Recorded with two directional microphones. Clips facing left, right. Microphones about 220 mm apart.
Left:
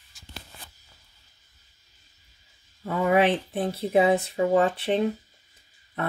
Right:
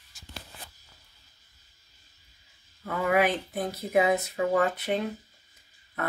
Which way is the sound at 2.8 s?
25° left (ahead or behind).